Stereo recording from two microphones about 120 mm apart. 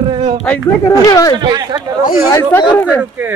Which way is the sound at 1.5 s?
35° right (ahead or behind).